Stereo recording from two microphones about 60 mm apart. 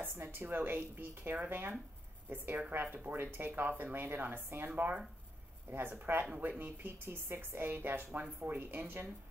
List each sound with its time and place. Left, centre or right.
0.0 s speech: right
4.6 s speech: right